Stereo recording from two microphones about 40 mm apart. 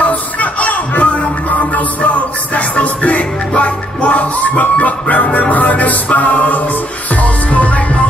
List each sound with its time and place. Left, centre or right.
0.0 s music: left